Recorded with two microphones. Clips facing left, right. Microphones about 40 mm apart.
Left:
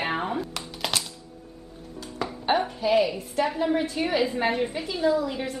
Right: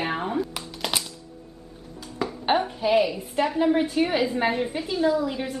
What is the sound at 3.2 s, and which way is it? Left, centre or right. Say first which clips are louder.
A woman's voice: right 3 dB; centre.